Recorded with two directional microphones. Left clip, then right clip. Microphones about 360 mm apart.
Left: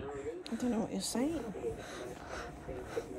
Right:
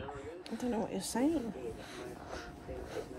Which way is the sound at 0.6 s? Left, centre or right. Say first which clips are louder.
Even; left.